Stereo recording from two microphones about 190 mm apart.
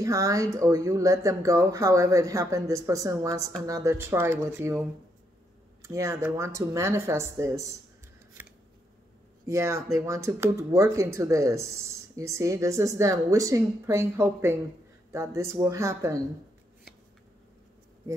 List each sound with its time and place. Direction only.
0.0 s speech: 15° right (ahead or behind)
9.5 s speech: 15° right (ahead or behind)
18.1 s a sound: 15° right (ahead or behind)